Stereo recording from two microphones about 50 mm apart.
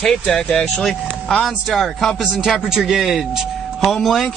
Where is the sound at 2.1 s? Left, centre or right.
Centre.